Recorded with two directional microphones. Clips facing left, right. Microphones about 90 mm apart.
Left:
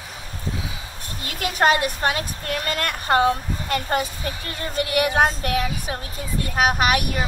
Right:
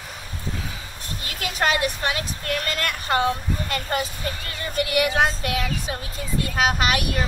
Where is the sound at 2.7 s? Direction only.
45° left (ahead or behind).